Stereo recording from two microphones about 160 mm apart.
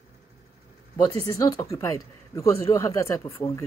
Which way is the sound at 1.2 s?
20° left (ahead or behind).